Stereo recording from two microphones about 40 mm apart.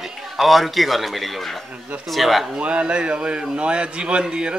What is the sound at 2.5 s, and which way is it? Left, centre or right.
Speech, right.